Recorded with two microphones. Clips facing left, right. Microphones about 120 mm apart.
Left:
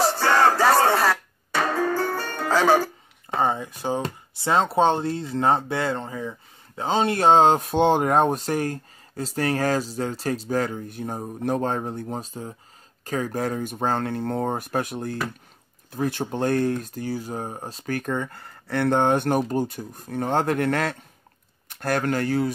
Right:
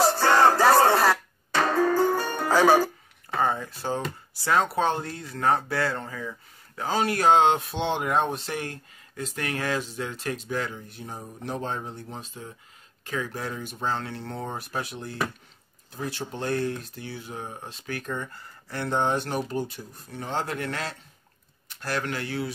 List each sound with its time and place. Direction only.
0.0 s music: centre (ahead or behind)
1.9 s music: 15° right (ahead or behind)
3.3 s speech: 25° left (ahead or behind)
4.4 s speech: 25° left (ahead or behind); by 18.1 s 45° left (ahead or behind)
18.1 s speech: 60° left (ahead or behind); by 22.5 s 45° left (ahead or behind)